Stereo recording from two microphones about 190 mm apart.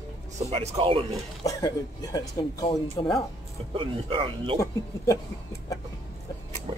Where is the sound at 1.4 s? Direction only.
20° left (ahead or behind).